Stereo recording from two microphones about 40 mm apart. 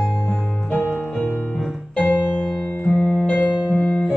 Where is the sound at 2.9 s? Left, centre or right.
Centre.